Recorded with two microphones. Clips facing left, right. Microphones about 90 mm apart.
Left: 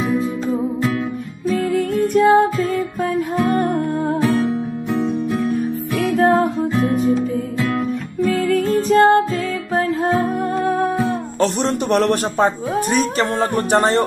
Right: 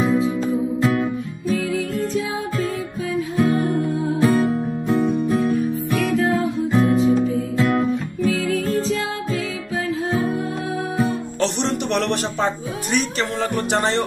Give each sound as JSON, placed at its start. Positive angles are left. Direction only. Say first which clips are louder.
{"t": 1.7, "sound": "music", "louder": "left 5 dB", "side_deg": 50}
{"t": 3.5, "sound": "music", "louder": "left 2 dB", "side_deg": 65}
{"t": 6.1, "sound": "music", "louder": "left 7 dB", "side_deg": 50}
{"t": 8.2, "sound": "music", "louder": "left 6 dB", "side_deg": 45}
{"t": 11.3, "sound": "a sound", "louder": "left 5 dB", "side_deg": 40}
{"t": 12.9, "sound": "speech", "louder": "left 1 dB", "side_deg": 40}